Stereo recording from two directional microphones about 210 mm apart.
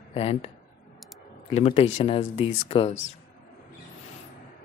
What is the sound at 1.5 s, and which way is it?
Speech, 30° left (ahead or behind).